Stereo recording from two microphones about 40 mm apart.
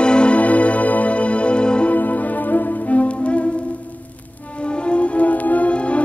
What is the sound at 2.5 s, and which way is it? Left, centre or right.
Music, left.